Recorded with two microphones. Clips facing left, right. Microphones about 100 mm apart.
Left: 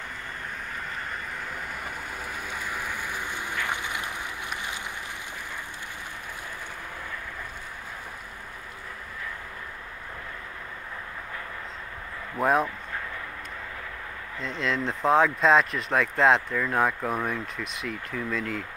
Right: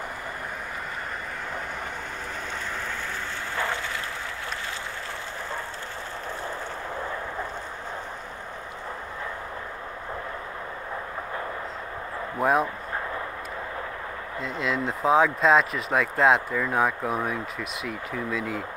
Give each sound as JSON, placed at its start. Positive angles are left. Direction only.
{"t": 3.5, "sound": "a sound", "side_deg": 15}
{"t": 12.4, "sound": "speech", "side_deg": 0}
{"t": 14.4, "sound": "speech", "side_deg": -5}